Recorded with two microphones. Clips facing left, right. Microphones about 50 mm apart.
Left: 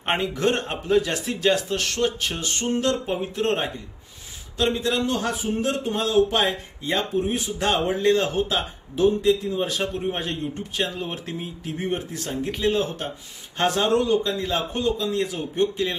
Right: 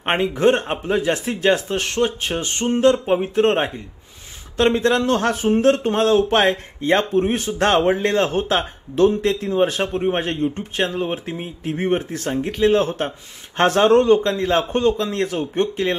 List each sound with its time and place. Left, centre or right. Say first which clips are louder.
0.0 s speech: right 6 dB; right
9.7 s a man's voice: right 5 dB; right